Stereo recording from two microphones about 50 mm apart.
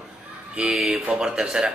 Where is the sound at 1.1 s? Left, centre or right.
Centre.